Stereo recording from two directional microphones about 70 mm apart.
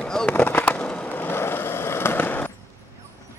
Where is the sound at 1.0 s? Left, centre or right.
Left.